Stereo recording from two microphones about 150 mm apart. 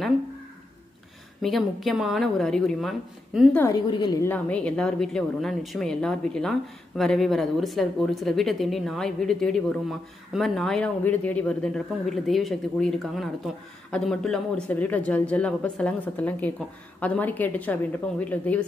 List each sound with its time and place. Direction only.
1.4 s speech: centre (ahead or behind)
3.7 s a woman's voice: 30° left (ahead or behind)
4.2 s a man's voice: 10° left (ahead or behind)